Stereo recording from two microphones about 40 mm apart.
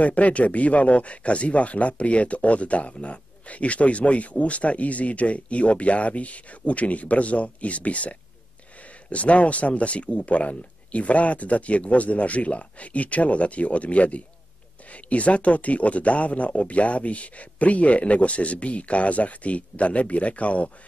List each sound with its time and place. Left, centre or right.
0.0 s speech: left